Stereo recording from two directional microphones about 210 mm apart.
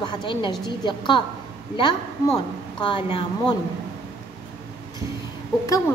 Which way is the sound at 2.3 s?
25° left (ahead or behind).